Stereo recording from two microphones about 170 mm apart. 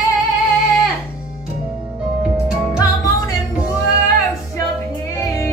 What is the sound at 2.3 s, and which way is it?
Music, 5° right (ahead or behind).